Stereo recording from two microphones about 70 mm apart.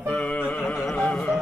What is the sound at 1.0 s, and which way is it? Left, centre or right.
Carnatic music, centre.